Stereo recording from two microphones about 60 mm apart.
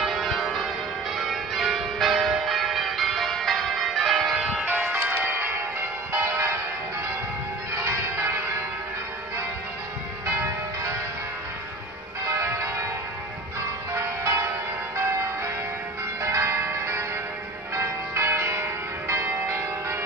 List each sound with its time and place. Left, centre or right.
0.0 s church bell: centre
4.6 s music: right
7.7 s change ringing: right
12.3 s church bell: right
13.9 s change ringing: right
15.0 s music: right
16.2 s change ringing: right
17.7 s church bell: right